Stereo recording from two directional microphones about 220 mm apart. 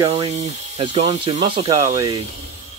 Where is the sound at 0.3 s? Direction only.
30° right (ahead or behind); by 2.1 s 15° right (ahead or behind).